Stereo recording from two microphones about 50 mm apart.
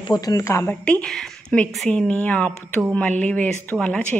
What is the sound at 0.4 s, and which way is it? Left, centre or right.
Speech, left.